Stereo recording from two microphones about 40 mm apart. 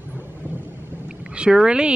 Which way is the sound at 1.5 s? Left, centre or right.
Right.